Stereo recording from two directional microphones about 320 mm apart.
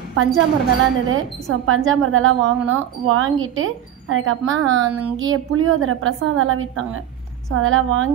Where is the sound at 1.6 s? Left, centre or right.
Right.